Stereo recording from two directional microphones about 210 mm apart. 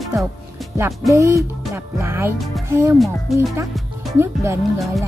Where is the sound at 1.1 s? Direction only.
15° right (ahead or behind).